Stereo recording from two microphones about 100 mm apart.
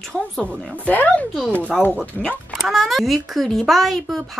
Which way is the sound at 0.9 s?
15° left (ahead or behind).